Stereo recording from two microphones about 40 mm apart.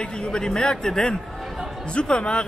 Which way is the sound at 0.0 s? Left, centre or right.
Left.